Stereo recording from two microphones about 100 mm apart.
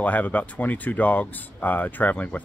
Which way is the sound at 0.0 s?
15° left (ahead or behind).